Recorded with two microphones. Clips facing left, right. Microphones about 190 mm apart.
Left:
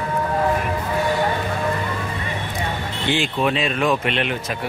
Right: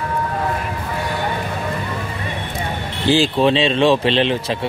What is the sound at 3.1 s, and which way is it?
Speech, 30° right (ahead or behind).